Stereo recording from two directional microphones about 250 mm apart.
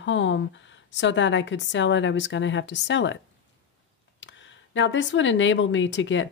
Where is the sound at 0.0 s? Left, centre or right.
Left.